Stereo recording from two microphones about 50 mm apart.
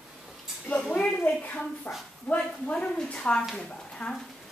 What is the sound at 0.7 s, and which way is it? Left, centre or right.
Speech, left.